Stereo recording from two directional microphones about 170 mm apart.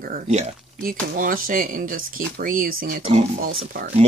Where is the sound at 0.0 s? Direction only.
50° right (ahead or behind).